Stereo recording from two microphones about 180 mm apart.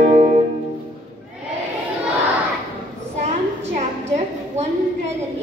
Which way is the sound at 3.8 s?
40° right (ahead or behind).